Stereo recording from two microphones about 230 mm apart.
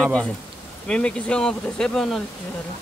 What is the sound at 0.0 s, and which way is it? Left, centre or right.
Speech, centre.